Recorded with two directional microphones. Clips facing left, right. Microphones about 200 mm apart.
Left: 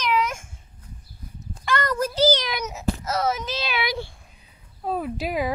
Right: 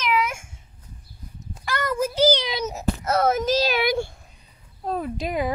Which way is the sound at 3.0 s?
55° right (ahead or behind).